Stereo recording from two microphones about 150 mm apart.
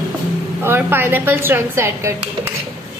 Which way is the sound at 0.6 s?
15° right (ahead or behind).